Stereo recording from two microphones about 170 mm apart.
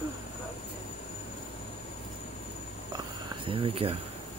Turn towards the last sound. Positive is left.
turn(degrees=-35)  # may be behind; listen again after turning